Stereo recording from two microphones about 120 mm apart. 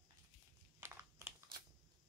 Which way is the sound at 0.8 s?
20° right (ahead or behind).